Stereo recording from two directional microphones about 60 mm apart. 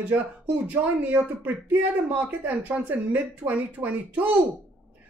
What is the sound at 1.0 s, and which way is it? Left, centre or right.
Speech, right.